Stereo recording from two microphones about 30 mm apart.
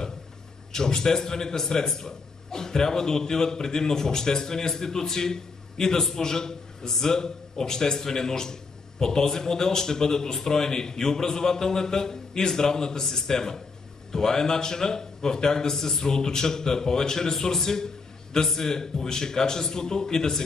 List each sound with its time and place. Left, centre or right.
0.7 s a man's voice: left